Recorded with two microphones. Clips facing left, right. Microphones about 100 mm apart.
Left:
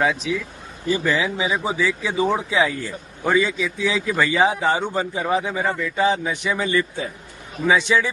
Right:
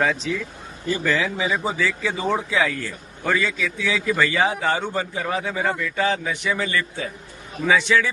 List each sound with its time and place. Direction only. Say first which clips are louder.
0.0 s a man's voice: left 1 dB; 10° left (ahead or behind)